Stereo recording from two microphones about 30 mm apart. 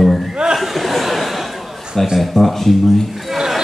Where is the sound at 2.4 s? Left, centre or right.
Right.